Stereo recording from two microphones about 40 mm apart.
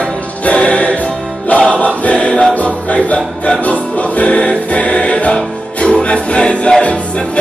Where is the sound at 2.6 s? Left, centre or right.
Left.